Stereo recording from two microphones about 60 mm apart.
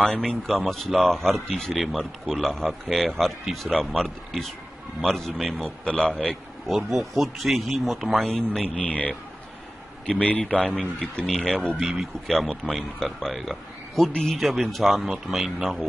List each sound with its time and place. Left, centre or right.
0.5 s a man's voice: centre
8.3 s speech: centre
8.7 s a man's voice: left
10.1 s a man's voice: left
10.4 s a man's voice: centre
11.8 s a man's voice: centre